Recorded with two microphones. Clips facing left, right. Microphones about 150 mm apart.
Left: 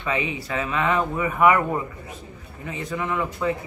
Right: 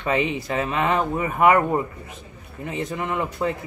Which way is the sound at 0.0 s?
40° right (ahead or behind).